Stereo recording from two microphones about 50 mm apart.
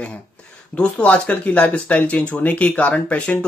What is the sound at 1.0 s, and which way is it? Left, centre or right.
Speech, left.